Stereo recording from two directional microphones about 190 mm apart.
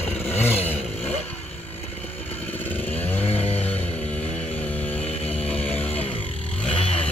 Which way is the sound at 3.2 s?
30° left (ahead or behind).